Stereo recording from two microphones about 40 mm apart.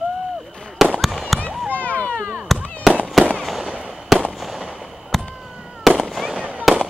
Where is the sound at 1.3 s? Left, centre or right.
Centre.